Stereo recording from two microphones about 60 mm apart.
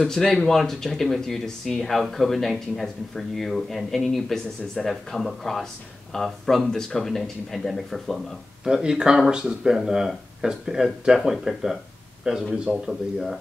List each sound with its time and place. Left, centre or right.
0.0 s speech: centre
8.6 s speech: centre